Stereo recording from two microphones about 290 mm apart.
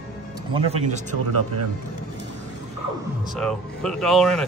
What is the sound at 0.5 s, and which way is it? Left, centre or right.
Speech, centre.